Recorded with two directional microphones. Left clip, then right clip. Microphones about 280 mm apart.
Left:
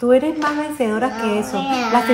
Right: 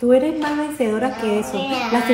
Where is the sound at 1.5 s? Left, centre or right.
Left.